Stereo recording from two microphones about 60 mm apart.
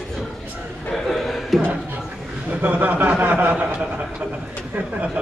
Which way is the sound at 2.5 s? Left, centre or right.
Right.